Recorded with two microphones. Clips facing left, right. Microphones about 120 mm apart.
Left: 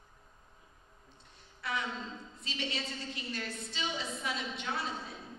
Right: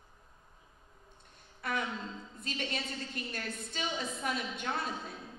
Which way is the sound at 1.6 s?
50° right (ahead or behind).